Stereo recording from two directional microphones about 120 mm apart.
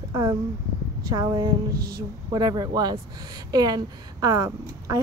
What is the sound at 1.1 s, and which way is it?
A woman's voice, 35° right (ahead or behind).